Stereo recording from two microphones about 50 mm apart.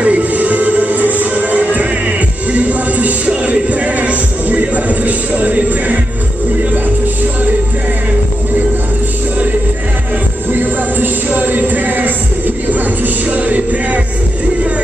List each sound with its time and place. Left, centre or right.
0.0 s music: right
10.5 s a sound: right
12.7 s music: right